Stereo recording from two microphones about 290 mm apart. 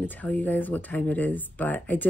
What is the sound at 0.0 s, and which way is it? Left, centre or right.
Speech, centre.